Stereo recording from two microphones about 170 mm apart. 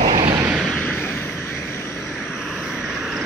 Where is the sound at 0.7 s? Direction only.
5° left (ahead or behind).